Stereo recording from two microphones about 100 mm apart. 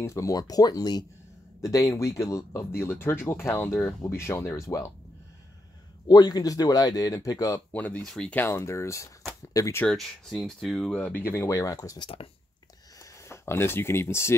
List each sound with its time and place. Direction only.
0.0 s speech: 30° left (ahead or behind)
6.0 s speech: 40° left (ahead or behind)
7.7 s speech: 15° left (ahead or behind)
8.4 s speech: 25° left (ahead or behind)
9.8 s speech: centre (ahead or behind); by 14.3 s 25° left (ahead or behind)